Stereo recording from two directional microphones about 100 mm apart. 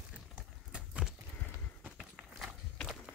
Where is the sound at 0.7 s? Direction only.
10° right (ahead or behind).